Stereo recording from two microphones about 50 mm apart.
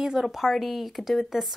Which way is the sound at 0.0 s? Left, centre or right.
Centre.